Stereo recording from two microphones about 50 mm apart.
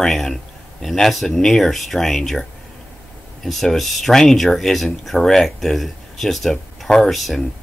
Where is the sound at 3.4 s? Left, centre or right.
Centre.